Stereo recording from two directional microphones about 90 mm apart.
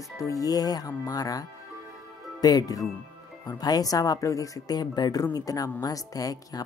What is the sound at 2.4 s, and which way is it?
Speech, 45° left (ahead or behind).